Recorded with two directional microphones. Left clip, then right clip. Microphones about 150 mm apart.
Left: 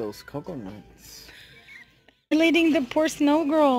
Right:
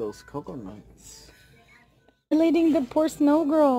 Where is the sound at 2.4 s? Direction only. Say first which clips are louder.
Left 1 dB; 10° right (ahead or behind).